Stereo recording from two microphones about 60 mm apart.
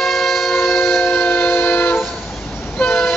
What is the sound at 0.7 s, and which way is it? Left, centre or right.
Train, left.